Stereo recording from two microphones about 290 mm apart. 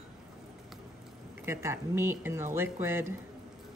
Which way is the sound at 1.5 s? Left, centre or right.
Centre.